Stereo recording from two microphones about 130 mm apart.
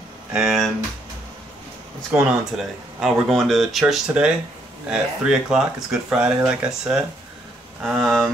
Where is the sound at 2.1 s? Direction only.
5° right (ahead or behind).